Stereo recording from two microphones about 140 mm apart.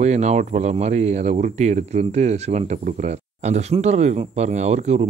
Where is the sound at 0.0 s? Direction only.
50° right (ahead or behind).